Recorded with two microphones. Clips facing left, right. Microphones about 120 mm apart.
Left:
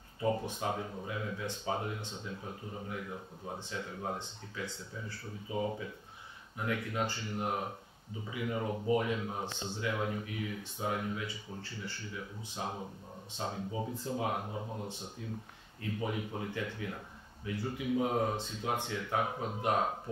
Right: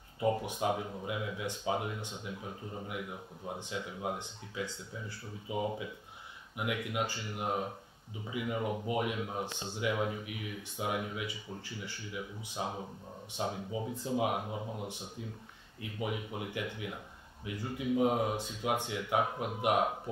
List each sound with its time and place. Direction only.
0.2 s speech: 15° right (ahead or behind)